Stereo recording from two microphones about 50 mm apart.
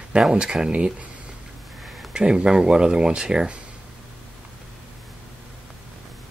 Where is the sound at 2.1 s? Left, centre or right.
Centre.